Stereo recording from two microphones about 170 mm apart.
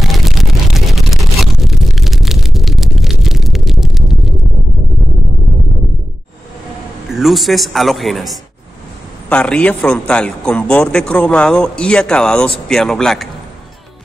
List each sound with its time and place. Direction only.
0.1 s vehicle: centre (ahead or behind)
5.5 s a sound: 20° right (ahead or behind)
7.1 s a man's voice: centre (ahead or behind)